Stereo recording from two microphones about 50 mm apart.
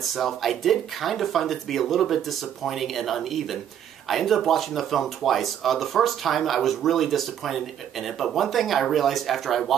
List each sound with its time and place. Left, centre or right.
0.1 s speech: centre